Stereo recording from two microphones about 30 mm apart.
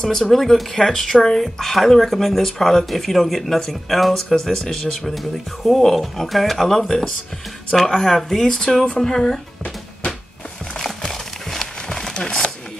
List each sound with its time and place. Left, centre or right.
0.0 s speech: centre
5.1 s speech: centre; by 9.4 s left
11.1 s a sound: centre